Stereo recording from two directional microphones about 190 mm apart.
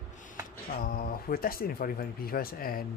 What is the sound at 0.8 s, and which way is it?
Speech, 50° left (ahead or behind).